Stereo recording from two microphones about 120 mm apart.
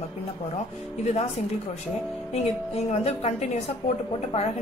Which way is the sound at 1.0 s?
60° left (ahead or behind).